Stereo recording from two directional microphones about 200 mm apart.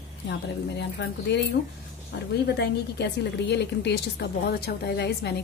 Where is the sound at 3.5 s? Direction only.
55° left (ahead or behind).